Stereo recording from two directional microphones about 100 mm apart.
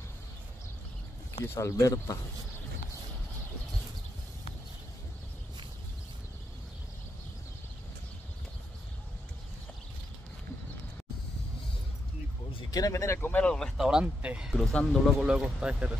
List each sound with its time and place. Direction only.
1.4 s speech: 30° left (ahead or behind)
12.7 s speech: 35° left (ahead or behind)
13.3 s a sound: 10° left (ahead or behind)
13.8 s speech: 10° right (ahead or behind)
14.6 s speech: 5° left (ahead or behind); by 15.9 s 10° right (ahead or behind)